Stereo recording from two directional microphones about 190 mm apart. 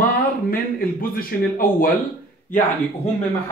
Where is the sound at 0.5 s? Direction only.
50° left (ahead or behind).